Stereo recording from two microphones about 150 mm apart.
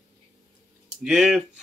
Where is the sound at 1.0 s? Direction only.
5° right (ahead or behind).